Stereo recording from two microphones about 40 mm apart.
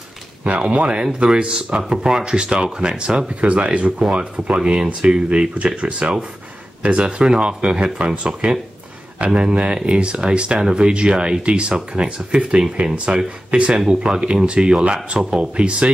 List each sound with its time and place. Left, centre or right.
0.4 s speech: right
4.8 s speech: right
13.7 s speech: centre